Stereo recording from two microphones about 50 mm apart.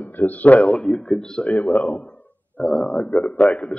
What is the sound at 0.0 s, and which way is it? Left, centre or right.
A man's voice, left.